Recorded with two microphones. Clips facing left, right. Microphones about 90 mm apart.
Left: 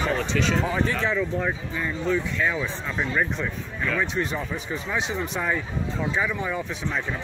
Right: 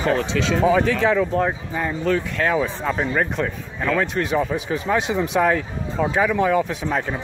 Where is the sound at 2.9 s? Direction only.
55° right (ahead or behind).